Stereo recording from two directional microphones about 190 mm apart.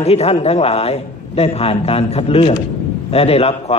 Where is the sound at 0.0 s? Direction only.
30° left (ahead or behind).